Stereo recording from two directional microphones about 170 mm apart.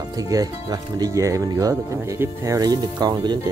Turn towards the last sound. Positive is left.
turn(degrees=-25)  # may be behind; listen again after turning